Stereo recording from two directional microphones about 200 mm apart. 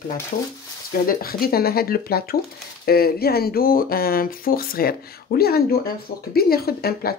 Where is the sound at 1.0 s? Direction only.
50° left (ahead or behind).